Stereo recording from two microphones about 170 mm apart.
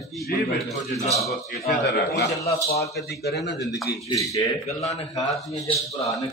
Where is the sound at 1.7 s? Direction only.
70° left (ahead or behind).